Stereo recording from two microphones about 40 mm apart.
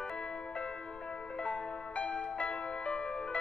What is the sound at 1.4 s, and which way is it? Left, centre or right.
Music, left.